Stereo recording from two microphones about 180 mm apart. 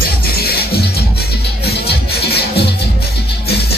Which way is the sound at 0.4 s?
60° left (ahead or behind).